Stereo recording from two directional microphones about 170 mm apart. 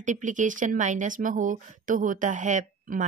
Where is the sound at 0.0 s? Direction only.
45° right (ahead or behind).